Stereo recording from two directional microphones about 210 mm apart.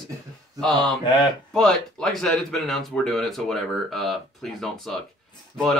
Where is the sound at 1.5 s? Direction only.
Centre (ahead or behind).